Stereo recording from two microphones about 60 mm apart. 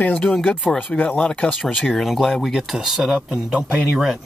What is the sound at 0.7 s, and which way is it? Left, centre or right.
Speech, left.